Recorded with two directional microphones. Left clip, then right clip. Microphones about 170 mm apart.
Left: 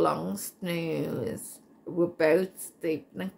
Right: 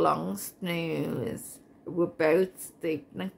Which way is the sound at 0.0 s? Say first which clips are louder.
Right 1 dB; 20° right (ahead or behind).